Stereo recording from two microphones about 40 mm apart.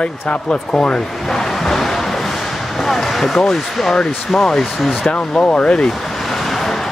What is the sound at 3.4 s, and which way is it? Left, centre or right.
Speech, centre.